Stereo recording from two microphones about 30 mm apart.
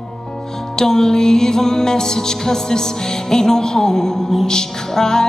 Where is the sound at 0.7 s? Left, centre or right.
Centre.